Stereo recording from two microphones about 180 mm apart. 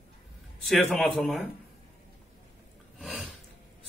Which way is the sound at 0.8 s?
5° left (ahead or behind).